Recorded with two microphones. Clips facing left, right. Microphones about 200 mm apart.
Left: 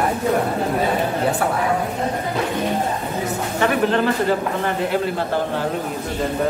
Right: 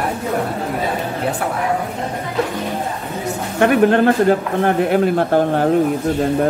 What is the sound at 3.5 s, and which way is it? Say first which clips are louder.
Speech: right 6 dB; 55° right (ahead or behind).